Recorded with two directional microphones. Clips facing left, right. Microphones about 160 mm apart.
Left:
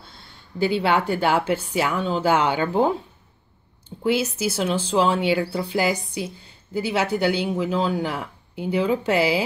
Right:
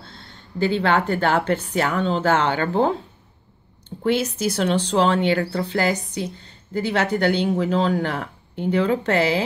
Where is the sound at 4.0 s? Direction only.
5° left (ahead or behind).